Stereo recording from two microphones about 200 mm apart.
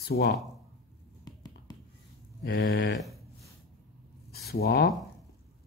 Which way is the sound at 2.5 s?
65° left (ahead or behind).